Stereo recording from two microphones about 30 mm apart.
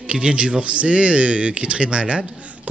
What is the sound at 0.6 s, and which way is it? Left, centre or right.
Speech, right.